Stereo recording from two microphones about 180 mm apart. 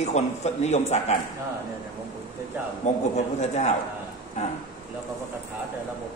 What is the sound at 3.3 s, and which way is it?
Speech, 40° left (ahead or behind).